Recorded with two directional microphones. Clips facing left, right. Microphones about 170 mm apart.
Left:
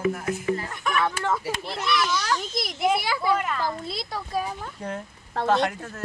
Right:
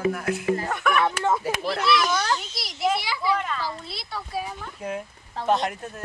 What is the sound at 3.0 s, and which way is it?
Children playing, 50° left (ahead or behind).